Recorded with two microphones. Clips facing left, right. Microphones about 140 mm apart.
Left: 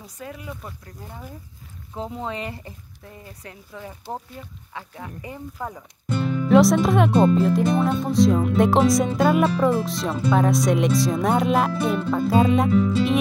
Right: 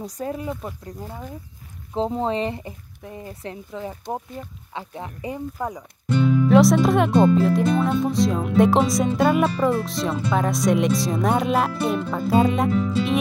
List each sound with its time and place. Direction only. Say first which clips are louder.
0.0 s speech: right 8 dB; 35° right (ahead or behind)
2.0 s speech: right 7 dB; 35° right (ahead or behind); by 5.9 s 15° right (ahead or behind)
6.2 s speech: right 1 dB; centre (ahead or behind)